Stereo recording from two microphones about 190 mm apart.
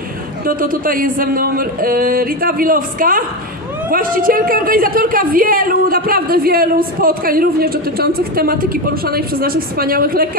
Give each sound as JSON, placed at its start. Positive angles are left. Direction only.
{"t": 0.5, "sound": "speech", "side_deg": -50}